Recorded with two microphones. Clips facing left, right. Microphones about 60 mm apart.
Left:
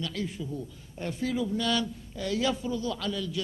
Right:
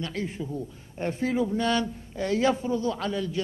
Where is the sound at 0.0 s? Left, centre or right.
Right.